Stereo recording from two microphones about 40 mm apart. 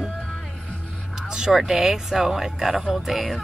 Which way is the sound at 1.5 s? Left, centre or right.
Centre.